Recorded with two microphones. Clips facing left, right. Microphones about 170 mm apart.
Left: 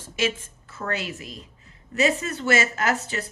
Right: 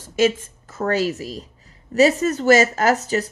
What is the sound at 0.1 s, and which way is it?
A woman's voice, 40° right (ahead or behind).